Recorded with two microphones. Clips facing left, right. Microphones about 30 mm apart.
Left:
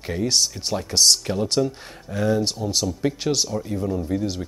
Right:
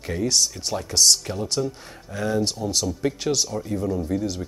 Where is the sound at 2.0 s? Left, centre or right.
Centre.